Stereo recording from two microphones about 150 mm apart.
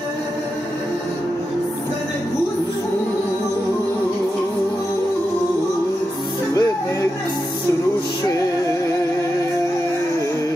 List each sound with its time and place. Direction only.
6.5 s music: 20° left (ahead or behind)